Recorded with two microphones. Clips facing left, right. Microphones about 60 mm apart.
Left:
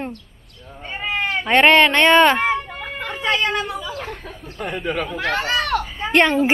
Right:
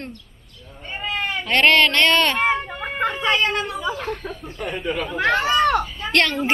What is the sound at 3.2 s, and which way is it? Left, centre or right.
Speech, left.